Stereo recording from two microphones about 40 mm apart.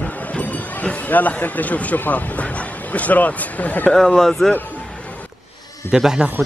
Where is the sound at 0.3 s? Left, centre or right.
Left.